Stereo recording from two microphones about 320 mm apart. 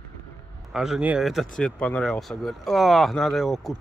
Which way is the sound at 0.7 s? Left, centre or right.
Centre.